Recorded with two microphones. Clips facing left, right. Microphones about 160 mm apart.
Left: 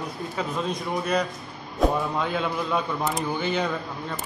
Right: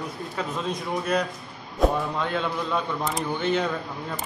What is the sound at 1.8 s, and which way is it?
Church bell, 5° left (ahead or behind).